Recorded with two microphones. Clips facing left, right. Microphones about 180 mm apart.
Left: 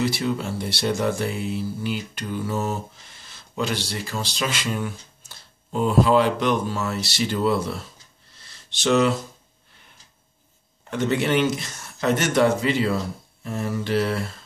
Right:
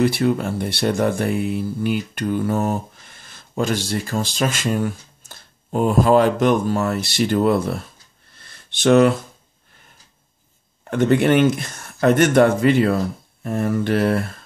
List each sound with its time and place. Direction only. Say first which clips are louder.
0.0 s speech: right 6 dB; 55° right (ahead or behind)
8.4 s a sound: right 7 dB; 55° right (ahead or behind)
10.9 s speech: right 6 dB; 55° right (ahead or behind)